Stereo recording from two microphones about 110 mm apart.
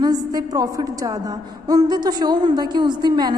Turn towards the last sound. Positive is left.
turn(degrees=-40)  # may be behind; listen again after turning